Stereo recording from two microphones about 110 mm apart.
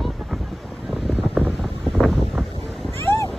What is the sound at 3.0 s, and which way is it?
Vehicle, 25° left (ahead or behind).